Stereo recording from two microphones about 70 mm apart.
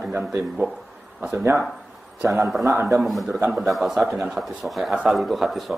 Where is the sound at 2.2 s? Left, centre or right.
Right.